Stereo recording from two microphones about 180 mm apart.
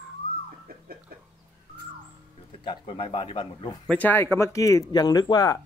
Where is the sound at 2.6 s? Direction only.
25° left (ahead or behind).